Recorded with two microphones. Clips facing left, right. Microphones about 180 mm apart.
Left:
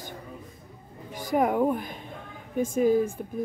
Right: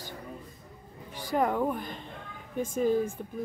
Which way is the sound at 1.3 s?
10° left (ahead or behind).